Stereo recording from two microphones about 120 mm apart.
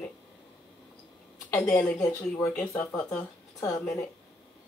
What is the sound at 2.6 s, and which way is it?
Speech, 25° left (ahead or behind).